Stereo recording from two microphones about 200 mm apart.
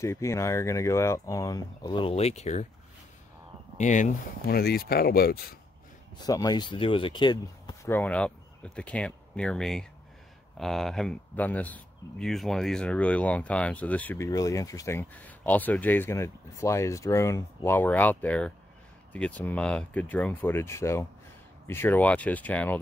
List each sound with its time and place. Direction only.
0.0 s speech: 15° left (ahead or behind); by 2.6 s 35° left (ahead or behind)
3.7 s speech: 40° left (ahead or behind)
6.2 s speech: 20° left (ahead or behind)
7.9 s speech: 5° left (ahead or behind)